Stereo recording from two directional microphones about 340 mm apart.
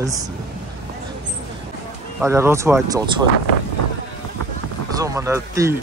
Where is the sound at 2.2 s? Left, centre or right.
Centre.